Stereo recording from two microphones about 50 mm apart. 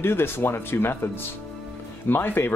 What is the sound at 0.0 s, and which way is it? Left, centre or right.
Speech, left.